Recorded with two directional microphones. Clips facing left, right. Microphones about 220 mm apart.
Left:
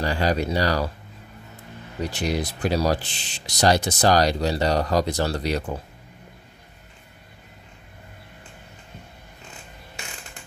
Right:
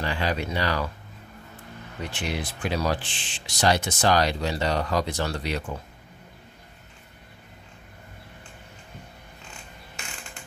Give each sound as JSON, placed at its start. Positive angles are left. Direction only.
{"t": 0.0, "sound": "speech", "side_deg": 40}
{"t": 2.0, "sound": "speech", "side_deg": 40}